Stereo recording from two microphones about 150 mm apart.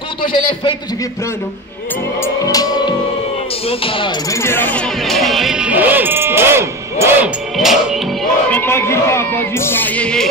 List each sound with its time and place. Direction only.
0.2 s a man's voice: 35° left (ahead or behind)
2.2 s music: 25° left (ahead or behind)
4.3 s speech: 15° left (ahead or behind); by 7.2 s 15° right (ahead or behind)
7.5 s music: centre (ahead or behind)
8.5 s speech: 15° left (ahead or behind)